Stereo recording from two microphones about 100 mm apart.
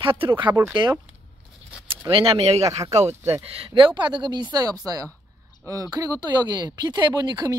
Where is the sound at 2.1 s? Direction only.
65° right (ahead or behind); by 2.7 s 90° right.